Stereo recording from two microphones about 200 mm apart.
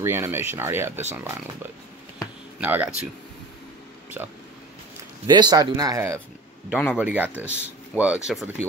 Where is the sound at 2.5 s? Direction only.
10° right (ahead or behind).